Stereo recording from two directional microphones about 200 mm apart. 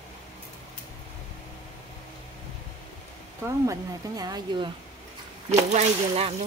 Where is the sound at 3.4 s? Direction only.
15° right (ahead or behind).